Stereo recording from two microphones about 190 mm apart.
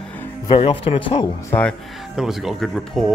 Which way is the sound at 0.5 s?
30° left (ahead or behind).